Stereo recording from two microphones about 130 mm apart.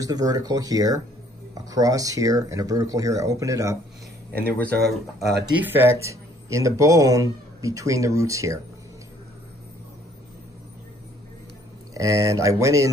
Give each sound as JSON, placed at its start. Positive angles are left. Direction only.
{"t": 0.0, "sound": "speech", "side_deg": -30}
{"t": 4.3, "sound": "speech", "side_deg": 10}
{"t": 5.6, "sound": "speech", "side_deg": -15}
{"t": 11.9, "sound": "speech", "side_deg": -25}